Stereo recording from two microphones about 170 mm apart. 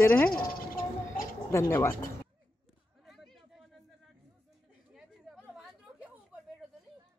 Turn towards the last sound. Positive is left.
turn(degrees=-5)  # may be behind; listen again after turning